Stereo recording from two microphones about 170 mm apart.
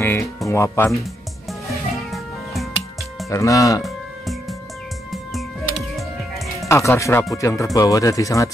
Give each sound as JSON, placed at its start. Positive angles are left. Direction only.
{"t": 0.0, "sound": "music", "side_deg": 15}
{"t": 0.5, "sound": "speech", "side_deg": 15}
{"t": 2.0, "sound": "music", "side_deg": 0}
{"t": 3.3, "sound": "speech", "side_deg": 20}
{"t": 3.8, "sound": "music", "side_deg": 0}
{"t": 6.7, "sound": "speech", "side_deg": 15}